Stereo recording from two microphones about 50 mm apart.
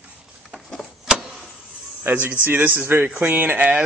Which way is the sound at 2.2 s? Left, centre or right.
Right.